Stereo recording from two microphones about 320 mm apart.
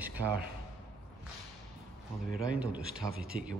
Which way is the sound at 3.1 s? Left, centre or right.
Right.